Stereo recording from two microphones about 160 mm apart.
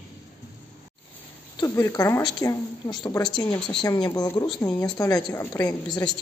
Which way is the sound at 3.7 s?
25° left (ahead or behind).